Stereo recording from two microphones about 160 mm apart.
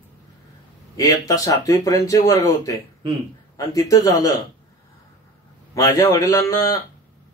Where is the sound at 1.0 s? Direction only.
20° left (ahead or behind).